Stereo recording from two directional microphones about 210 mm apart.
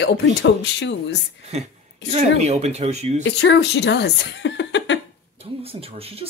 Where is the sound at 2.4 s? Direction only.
30° right (ahead or behind).